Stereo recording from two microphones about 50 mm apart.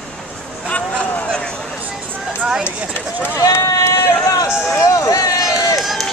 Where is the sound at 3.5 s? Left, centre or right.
Left.